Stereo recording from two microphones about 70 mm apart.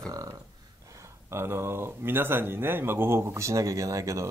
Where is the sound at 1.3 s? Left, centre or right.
Right.